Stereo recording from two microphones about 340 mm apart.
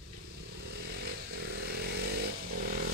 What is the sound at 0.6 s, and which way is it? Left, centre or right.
Motorcycle, right.